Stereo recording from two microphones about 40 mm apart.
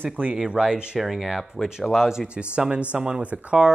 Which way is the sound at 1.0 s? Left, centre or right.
Centre.